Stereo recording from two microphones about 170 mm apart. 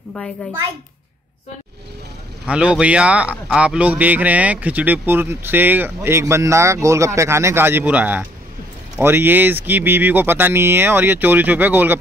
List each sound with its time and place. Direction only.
2.4 s a man's voice: 5° right (ahead or behind)